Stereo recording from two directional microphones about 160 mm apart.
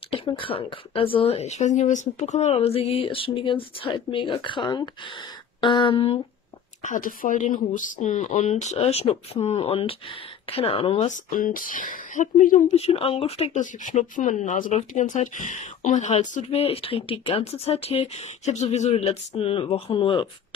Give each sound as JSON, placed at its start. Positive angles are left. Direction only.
{"t": 0.1, "sound": "speech", "side_deg": 30}
{"t": 6.8, "sound": "speech", "side_deg": 55}
{"t": 11.1, "sound": "speech", "side_deg": 55}
{"t": 12.7, "sound": "speech", "side_deg": 35}